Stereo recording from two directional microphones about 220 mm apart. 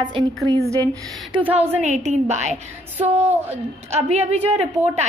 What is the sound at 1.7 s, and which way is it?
Speech, 30° right (ahead or behind).